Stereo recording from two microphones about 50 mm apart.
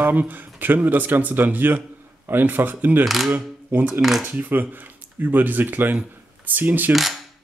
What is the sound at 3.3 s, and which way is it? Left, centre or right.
Speech, right.